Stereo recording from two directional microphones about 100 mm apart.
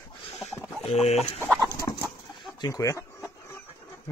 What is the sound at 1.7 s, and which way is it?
Chicken, 40° left (ahead or behind).